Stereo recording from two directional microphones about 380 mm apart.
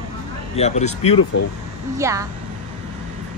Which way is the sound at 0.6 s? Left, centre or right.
Centre.